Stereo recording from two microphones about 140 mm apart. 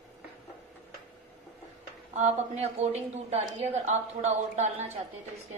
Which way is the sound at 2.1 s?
50° right (ahead or behind).